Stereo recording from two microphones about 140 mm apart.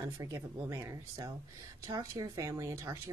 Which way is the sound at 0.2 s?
20° right (ahead or behind).